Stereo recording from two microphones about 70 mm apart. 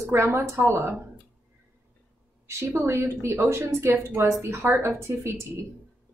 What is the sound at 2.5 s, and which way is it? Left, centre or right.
Speech, right.